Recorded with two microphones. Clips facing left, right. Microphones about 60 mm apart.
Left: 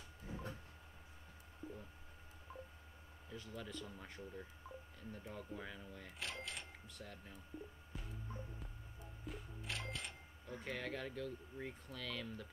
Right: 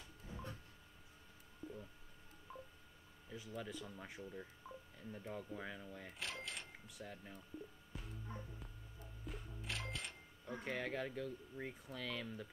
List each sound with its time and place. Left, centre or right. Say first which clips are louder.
1.6 s a sound: even; left
3.3 s speech: right 2 dB; centre
7.9 s music: right 1 dB; centre
9.2 s cash register: even; centre
10.6 s speech: right 2 dB; centre